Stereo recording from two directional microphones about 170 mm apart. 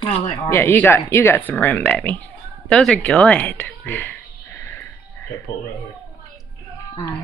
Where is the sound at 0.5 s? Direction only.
15° left (ahead or behind).